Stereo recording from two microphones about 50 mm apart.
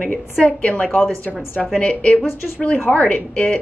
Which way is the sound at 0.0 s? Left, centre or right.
Left.